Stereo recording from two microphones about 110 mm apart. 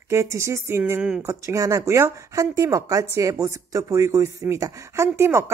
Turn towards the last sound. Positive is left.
turn(degrees=-25)  # may be behind; listen again after turning